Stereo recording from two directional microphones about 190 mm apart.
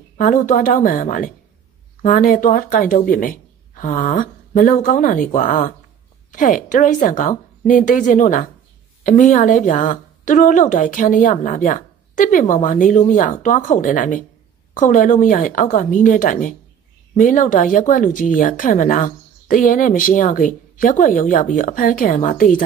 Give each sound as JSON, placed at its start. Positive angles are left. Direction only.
{"t": 0.2, "sound": "speech", "side_deg": 45}